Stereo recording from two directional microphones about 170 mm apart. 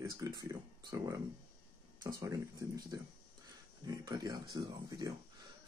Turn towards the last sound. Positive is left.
turn(degrees=-25)  # may be behind; listen again after turning